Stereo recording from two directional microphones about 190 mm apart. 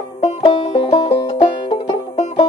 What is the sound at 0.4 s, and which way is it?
Music, 25° left (ahead or behind).